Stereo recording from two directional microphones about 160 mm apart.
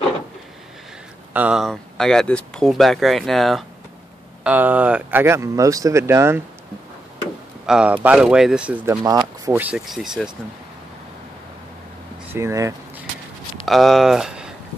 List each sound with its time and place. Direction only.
1.3 s speech: 5° right (ahead or behind)
4.4 s speech: 10° right (ahead or behind)
7.6 s speech: 5° right (ahead or behind)
9.0 s a sound: 20° right (ahead or behind)
9.6 s speech: 5° right (ahead or behind)
12.3 s speech: 15° right (ahead or behind)
13.7 s speech: centre (ahead or behind)